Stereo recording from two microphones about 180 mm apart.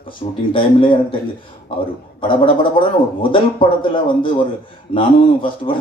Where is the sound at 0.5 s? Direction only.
30° left (ahead or behind).